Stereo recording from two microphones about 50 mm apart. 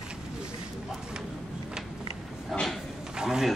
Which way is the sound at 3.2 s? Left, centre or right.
Centre.